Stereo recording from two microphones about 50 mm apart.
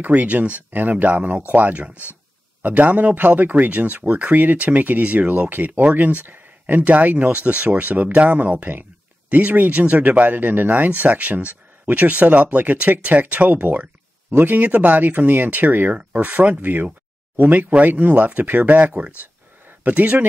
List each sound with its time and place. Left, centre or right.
0.0 s speech: right